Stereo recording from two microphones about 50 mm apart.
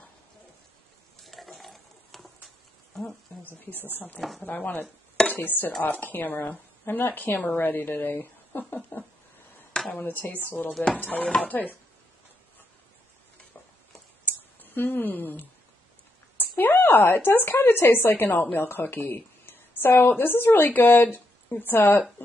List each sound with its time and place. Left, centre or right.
1.2 s a sound: centre
3.8 s a woman's voice: left
5.3 s dishes: left
5.8 s a woman's voice: left
9.7 s a sound: left
9.9 s a woman's voice: left
11.0 s a woman's voice: left
14.2 s a sound: left
17.4 s a woman's voice: left